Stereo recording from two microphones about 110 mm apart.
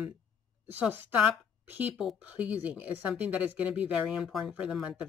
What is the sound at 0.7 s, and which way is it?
Speech, 15° right (ahead or behind).